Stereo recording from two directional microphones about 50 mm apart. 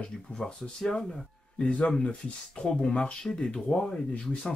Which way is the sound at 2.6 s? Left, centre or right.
Centre.